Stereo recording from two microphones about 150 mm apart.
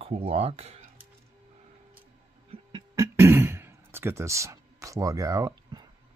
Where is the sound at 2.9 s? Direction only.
20° right (ahead or behind).